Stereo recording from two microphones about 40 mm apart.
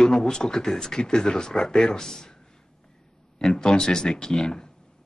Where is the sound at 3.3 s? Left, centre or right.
Centre.